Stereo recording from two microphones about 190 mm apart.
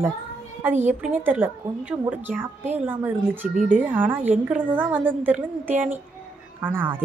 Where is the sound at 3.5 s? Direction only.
45° right (ahead or behind).